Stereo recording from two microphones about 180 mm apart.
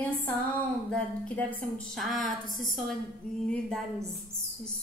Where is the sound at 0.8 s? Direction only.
5° left (ahead or behind).